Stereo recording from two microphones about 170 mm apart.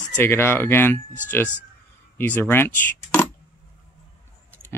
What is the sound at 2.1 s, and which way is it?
Speech, 10° left (ahead or behind).